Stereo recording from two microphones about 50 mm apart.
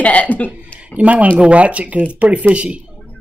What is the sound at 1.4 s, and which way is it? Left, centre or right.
Speech, right.